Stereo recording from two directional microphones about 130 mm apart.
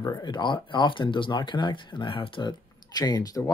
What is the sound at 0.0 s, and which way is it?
Speech, 30° left (ahead or behind).